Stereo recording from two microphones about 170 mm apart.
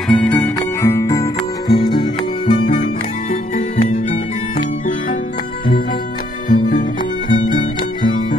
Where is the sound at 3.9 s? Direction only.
45° left (ahead or behind).